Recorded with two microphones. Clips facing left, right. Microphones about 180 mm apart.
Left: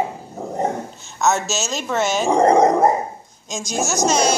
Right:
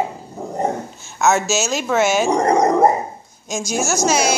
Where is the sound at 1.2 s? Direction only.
Centre (ahead or behind).